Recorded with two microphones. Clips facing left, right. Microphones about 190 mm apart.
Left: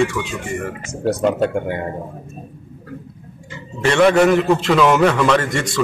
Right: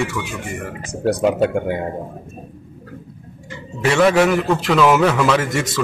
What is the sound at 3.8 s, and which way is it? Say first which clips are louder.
A man's voice: left 1 dB; 5° right (ahead or behind).